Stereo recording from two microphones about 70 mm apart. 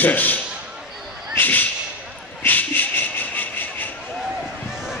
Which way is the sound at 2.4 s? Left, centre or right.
Left.